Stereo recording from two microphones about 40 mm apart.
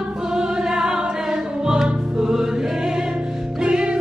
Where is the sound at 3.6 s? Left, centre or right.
Right.